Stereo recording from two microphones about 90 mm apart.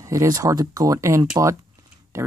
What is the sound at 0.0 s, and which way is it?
Speech, 35° right (ahead or behind).